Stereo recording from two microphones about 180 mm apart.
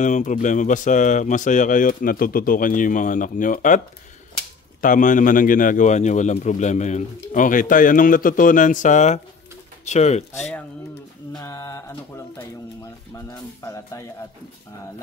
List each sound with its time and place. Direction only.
0.0 s speech: 45° left (ahead or behind)
4.8 s speech: 45° left (ahead or behind)
11.3 s mantra: 20° left (ahead or behind)
13.1 s speech: 15° left (ahead or behind)